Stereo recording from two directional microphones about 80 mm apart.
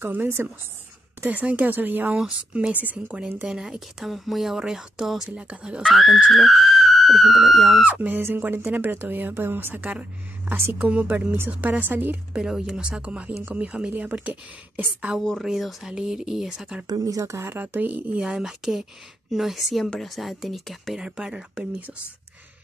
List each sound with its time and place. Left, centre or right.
0.0 s a woman's voice: right; by 5.9 s centre
5.9 s speech: centre
7.8 s speech: right
10.8 s speech: centre
12.4 s a woman's voice: centre
15.2 s a woman's voice: centre
16.8 s speech: right
18.2 s a woman's voice: centre